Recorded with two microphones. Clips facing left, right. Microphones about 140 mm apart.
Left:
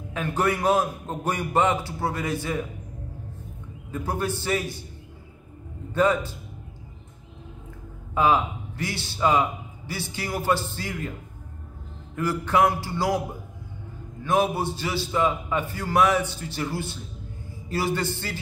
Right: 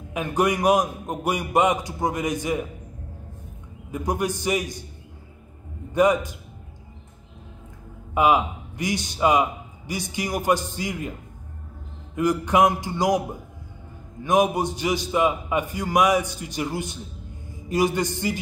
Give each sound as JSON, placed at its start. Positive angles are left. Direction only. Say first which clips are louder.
{"t": 0.1, "sound": "a man's voice", "louder": "right 2 dB", "side_deg": -15}
{"t": 3.9, "sound": "a man's voice", "louder": "right 2 dB", "side_deg": -15}
{"t": 5.9, "sound": "a man's voice", "louder": "right 3 dB", "side_deg": -15}
{"t": 8.1, "sound": "a man's voice", "louder": "right 2 dB", "side_deg": -15}
{"t": 12.2, "sound": "a man's voice", "louder": "right 3 dB", "side_deg": -15}
{"t": 14.2, "sound": "a man's voice", "louder": "right 3 dB", "side_deg": -15}